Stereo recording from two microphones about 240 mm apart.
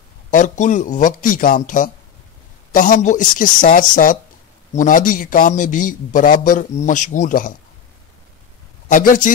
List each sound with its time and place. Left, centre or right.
0.3 s a man's voice: left
8.8 s a man's voice: left